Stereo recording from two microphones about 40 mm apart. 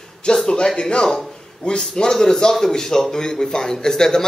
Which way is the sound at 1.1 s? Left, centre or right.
Centre.